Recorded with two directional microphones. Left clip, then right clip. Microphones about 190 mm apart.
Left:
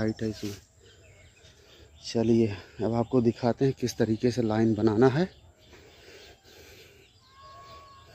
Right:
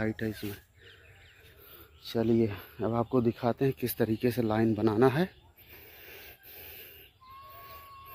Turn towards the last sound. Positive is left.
turn(degrees=20)  # may be behind; listen again after turning